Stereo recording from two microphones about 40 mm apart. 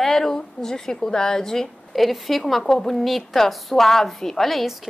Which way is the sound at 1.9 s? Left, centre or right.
Centre.